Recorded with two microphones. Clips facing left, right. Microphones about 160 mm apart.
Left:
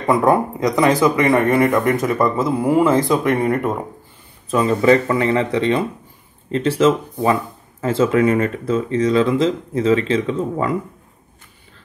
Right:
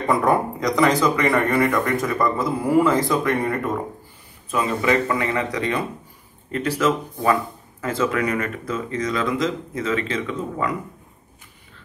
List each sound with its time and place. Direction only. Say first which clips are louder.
0.0 s speech: left 4 dB; 25° left (ahead or behind)
4.5 s speech: left 7 dB; 30° left (ahead or behind)